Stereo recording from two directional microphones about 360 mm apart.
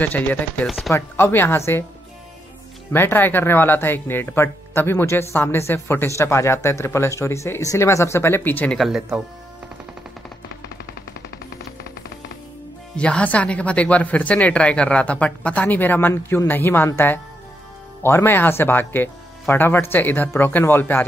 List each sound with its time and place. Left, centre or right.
0.0 s speech: centre
2.9 s speech: centre
11.2 s music: left
12.9 s speech: centre